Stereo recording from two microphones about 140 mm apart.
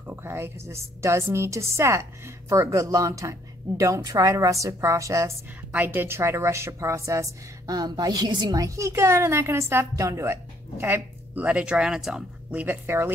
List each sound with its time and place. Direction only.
0.0 s a woman's voice: 15° right (ahead or behind)